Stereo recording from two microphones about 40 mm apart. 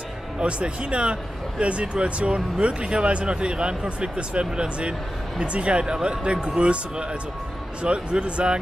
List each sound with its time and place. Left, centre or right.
0.4 s speech: right